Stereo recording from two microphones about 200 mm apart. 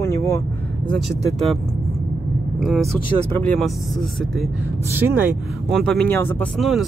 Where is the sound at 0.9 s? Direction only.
Centre (ahead or behind).